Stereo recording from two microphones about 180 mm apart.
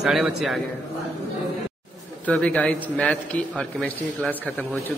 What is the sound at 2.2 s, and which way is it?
A man's voice, 5° left (ahead or behind).